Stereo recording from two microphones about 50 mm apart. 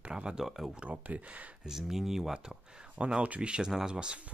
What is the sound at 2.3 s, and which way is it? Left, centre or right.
Speech, centre.